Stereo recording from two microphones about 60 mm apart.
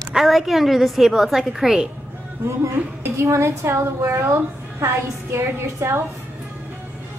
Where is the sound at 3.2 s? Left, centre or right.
Right.